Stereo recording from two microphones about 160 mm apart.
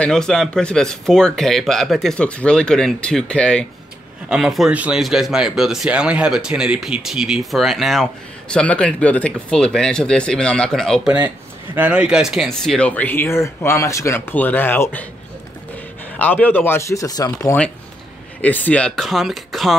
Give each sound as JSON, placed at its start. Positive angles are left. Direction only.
{"t": 0.0, "sound": "speech", "side_deg": 5}
{"t": 11.1, "sound": "speech", "side_deg": -10}
{"t": 16.2, "sound": "speech", "side_deg": 10}
{"t": 18.4, "sound": "speech", "side_deg": 10}